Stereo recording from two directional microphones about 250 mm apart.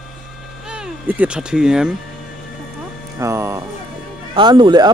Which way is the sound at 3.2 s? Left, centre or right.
Centre.